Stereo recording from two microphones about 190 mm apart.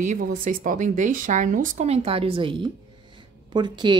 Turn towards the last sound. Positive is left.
turn(degrees=-25)  # may be behind; listen again after turning